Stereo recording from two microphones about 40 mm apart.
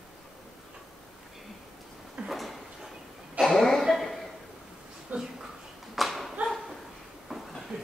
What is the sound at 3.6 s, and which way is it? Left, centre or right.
Cough, centre.